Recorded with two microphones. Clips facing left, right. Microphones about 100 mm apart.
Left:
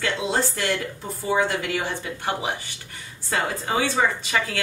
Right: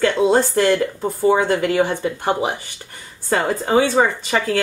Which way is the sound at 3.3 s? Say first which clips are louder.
Right 7 dB; 40° right (ahead or behind).